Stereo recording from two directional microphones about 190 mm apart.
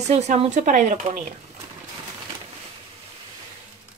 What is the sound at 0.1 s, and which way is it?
Speech, 35° right (ahead or behind).